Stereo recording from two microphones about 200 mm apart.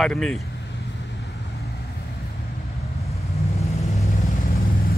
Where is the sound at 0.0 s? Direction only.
5° left (ahead or behind).